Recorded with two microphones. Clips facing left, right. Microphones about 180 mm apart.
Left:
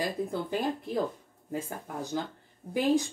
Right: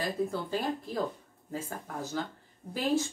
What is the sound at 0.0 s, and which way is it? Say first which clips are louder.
Speech: even; 20° left (ahead or behind).